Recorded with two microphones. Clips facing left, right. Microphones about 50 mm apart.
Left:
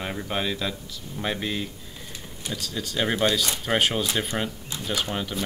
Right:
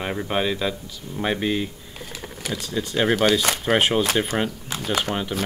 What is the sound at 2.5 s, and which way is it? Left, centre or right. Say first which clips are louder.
Speech: right 5 dB; right.